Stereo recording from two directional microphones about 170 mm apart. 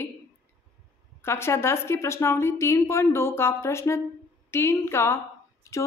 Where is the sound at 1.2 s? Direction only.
15° left (ahead or behind).